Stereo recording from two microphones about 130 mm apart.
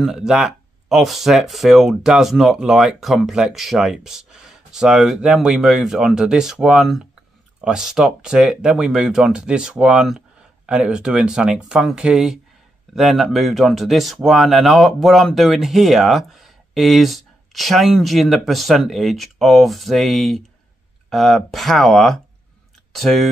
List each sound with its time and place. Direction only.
0.0 s speech: 5° right (ahead or behind)